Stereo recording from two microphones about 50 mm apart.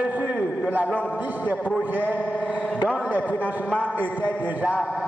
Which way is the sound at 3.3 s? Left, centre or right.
Left.